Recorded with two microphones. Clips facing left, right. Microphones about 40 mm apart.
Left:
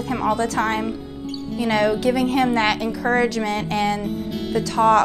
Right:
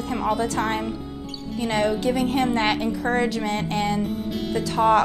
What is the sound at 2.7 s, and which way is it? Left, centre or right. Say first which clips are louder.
A woman's voice: left 2 dB; centre.